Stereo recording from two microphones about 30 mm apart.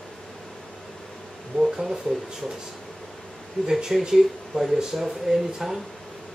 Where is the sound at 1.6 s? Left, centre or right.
Centre.